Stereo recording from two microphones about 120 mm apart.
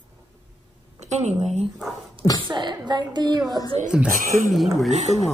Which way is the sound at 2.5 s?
40° right (ahead or behind).